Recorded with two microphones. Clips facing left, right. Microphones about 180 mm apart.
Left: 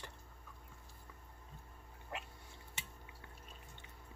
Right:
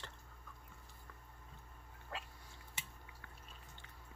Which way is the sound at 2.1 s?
20° left (ahead or behind).